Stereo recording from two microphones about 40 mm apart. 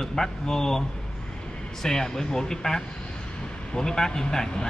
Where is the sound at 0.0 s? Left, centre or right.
Centre.